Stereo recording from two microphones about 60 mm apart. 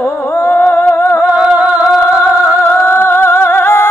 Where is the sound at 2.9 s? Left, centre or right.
Left.